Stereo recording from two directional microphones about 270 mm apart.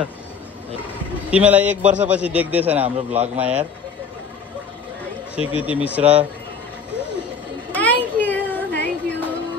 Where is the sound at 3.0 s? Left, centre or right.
Right.